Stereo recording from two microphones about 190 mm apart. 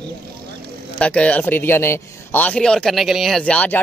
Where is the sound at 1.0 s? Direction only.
5° left (ahead or behind).